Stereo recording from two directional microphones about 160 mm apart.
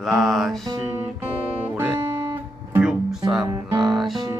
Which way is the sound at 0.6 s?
20° right (ahead or behind).